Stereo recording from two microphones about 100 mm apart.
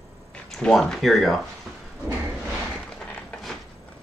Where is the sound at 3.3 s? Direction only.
15° left (ahead or behind).